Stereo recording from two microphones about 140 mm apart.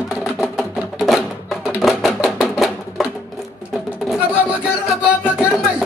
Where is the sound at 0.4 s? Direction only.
Centre (ahead or behind).